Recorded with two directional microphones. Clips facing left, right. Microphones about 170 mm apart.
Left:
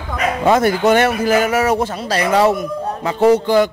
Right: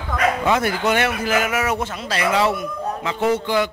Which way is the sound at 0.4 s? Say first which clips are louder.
Left 6 dB; 40° left (ahead or behind).